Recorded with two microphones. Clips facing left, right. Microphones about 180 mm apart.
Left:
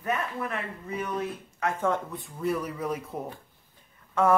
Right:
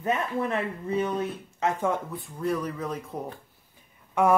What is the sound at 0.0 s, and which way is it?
Speech, 25° right (ahead or behind).